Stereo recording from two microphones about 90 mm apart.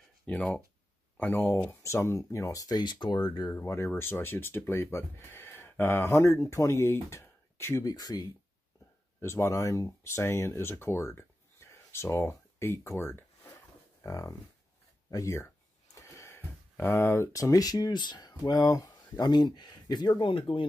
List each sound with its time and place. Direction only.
0.3 s speech: 15° left (ahead or behind)
1.8 s speech: 30° left (ahead or behind)
2.8 s speech: 60° left (ahead or behind)
3.4 s speech: 25° left (ahead or behind)
7.8 s speech: 45° left (ahead or behind)
9.2 s speech: 30° left (ahead or behind)
13.0 s a sound: 25° left (ahead or behind)
14.0 s speech: 40° left (ahead or behind)
15.9 s a sound: 35° left (ahead or behind)
16.9 s speech: 30° left (ahead or behind); by 20.6 s 75° left (ahead or behind)